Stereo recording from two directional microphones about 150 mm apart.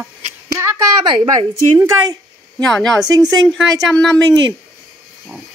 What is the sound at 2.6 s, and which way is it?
Speech, 5° left (ahead or behind).